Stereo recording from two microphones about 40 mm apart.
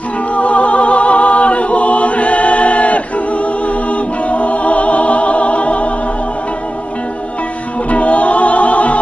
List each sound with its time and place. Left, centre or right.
0.4 s music: left
4.3 s music: left
7.9 s music: left